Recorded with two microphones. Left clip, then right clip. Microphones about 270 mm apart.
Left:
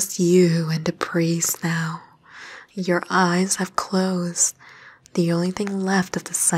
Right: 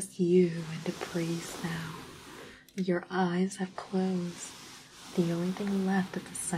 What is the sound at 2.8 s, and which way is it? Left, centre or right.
Speech, left.